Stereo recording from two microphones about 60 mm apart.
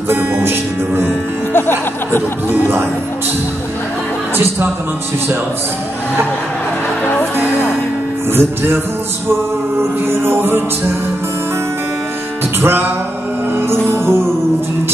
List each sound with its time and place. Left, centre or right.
0.1 s music: right
1.5 s music: left
2.5 s music: right
8.3 s music: right
10.0 s music: right
12.5 s music: right